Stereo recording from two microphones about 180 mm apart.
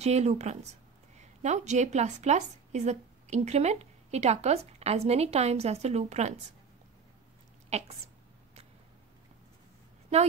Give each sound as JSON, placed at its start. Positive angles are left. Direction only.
{"t": 0.0, "sound": "a woman's voice", "side_deg": -35}
{"t": 7.7, "sound": "a woman's voice", "side_deg": -35}